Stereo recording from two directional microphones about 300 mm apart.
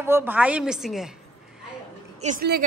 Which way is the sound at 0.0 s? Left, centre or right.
Centre.